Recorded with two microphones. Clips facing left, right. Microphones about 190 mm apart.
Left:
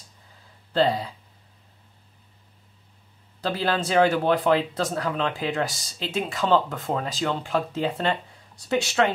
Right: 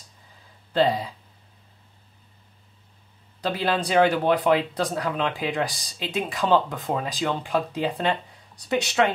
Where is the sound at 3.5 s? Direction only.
Centre (ahead or behind).